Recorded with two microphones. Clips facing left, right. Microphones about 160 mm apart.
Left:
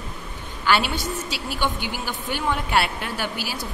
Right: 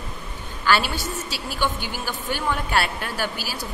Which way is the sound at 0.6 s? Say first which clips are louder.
Even; 20° left (ahead or behind).